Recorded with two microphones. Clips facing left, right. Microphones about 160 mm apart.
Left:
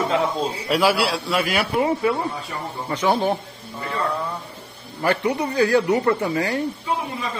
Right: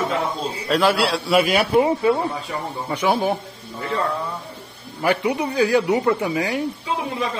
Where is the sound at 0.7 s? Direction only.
5° left (ahead or behind).